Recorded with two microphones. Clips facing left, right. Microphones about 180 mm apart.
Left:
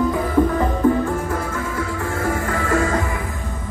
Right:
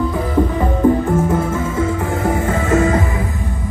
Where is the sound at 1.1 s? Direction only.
20° right (ahead or behind).